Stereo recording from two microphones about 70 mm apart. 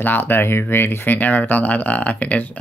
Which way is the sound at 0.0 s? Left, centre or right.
Left.